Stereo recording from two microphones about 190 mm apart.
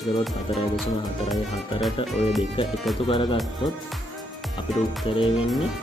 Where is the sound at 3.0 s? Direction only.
25° left (ahead or behind).